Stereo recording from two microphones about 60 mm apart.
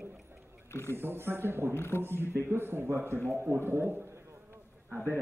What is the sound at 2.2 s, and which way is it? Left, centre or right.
Speech, right.